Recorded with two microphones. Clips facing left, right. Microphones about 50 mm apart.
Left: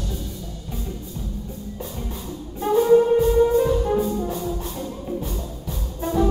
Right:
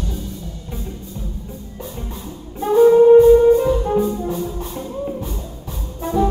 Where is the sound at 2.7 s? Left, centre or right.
Centre.